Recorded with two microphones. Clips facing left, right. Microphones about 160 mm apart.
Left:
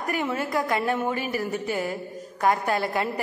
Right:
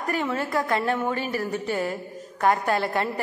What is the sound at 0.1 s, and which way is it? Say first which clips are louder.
A woman's voice: right 1 dB; 15° left (ahead or behind).